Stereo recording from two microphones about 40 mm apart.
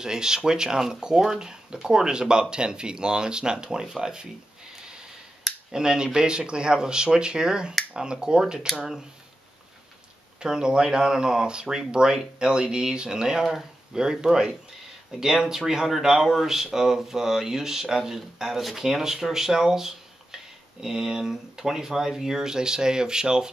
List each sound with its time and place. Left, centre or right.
0.0 s speech: centre
5.7 s speech: centre
10.4 s speech: right